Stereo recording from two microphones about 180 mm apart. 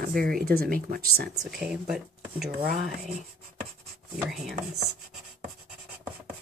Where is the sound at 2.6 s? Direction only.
50° right (ahead or behind).